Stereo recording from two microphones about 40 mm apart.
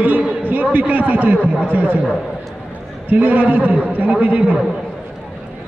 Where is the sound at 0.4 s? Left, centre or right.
Right.